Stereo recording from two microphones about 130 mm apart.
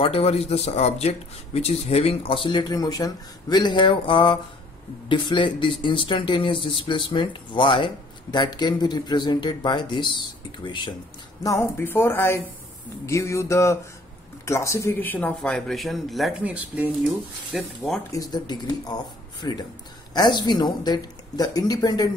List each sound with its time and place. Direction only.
0.0 s speech: 50° left (ahead or behind)
11.4 s speech: 20° left (ahead or behind); by 16.4 s centre (ahead or behind)
16.4 s speech: 10° right (ahead or behind)
18.1 s speech: 30° left (ahead or behind)